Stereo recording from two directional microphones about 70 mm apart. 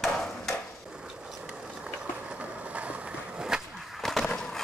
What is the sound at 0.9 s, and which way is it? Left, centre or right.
Vehicle, centre.